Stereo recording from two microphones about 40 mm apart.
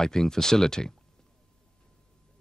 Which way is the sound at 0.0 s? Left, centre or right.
Centre.